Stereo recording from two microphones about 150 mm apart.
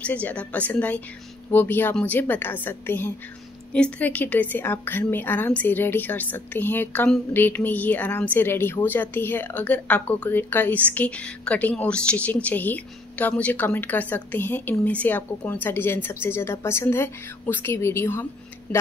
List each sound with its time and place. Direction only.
0.0 s a woman's voice: 10° left (ahead or behind)